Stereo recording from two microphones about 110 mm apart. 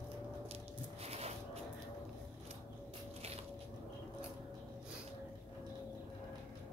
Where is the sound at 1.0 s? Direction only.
75° right (ahead or behind).